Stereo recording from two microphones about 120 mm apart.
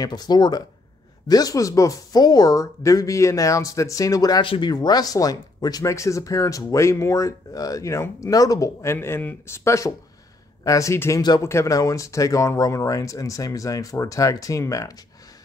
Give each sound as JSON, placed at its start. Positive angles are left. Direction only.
{"t": 0.0, "sound": "speech", "side_deg": 35}